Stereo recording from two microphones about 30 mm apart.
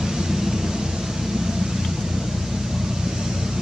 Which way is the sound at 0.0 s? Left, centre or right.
Centre.